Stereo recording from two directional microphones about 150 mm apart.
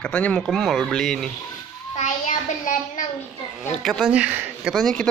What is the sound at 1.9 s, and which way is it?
Child singing, 55° left (ahead or behind).